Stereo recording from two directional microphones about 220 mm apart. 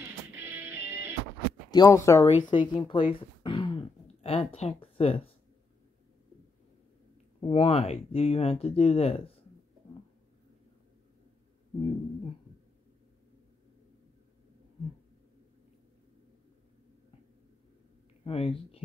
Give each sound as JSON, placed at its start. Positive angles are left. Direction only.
{"t": 0.0, "sound": "music", "side_deg": -10}
{"t": 1.7, "sound": "speech", "side_deg": 15}
{"t": 2.2, "sound": "throat clearing", "side_deg": 25}
{"t": 7.3, "sound": "speech", "side_deg": 25}
{"t": 18.2, "sound": "a sound", "side_deg": 25}